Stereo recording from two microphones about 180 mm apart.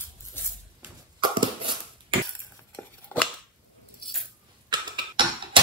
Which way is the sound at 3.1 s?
10° left (ahead or behind).